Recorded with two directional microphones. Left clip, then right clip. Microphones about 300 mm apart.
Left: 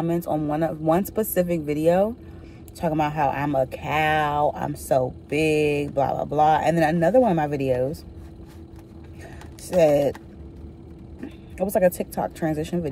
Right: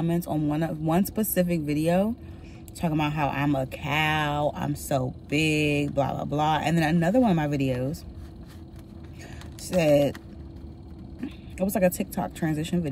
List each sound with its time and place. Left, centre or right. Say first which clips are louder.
0.0 s speech: left 4 dB; centre
12.0 s speech: left 4 dB; centre